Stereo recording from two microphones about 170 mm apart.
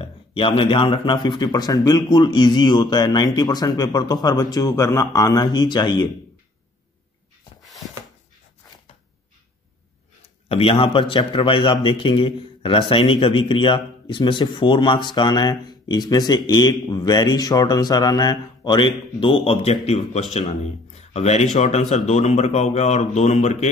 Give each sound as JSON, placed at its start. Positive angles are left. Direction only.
{"t": 0.0, "sound": "a man's voice", "side_deg": 35}
{"t": 10.5, "sound": "a man's voice", "side_deg": 35}